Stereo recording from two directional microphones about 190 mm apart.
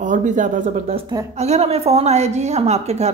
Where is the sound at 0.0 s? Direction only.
40° right (ahead or behind).